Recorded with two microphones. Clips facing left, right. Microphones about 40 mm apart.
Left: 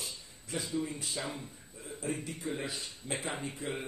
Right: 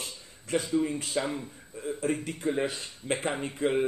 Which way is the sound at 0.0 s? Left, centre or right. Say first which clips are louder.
Right 3 dB; right.